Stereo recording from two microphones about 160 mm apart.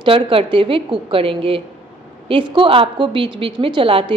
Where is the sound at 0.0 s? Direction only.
35° right (ahead or behind).